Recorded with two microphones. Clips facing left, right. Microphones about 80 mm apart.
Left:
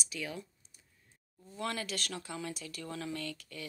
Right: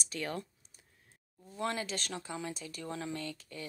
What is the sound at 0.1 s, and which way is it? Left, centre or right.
Speech, right.